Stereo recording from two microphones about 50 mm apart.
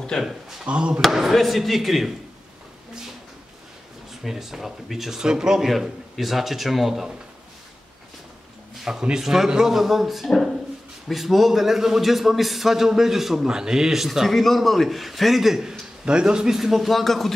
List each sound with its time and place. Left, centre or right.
0.2 s a man's voice: centre
0.7 s speech: right
1.0 s a man's voice: centre
4.1 s a man's voice: centre
8.9 s a man's voice: centre
16.1 s a man's voice: centre